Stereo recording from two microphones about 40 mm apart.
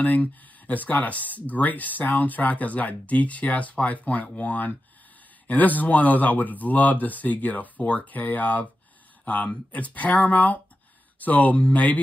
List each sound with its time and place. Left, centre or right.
0.0 s speech: left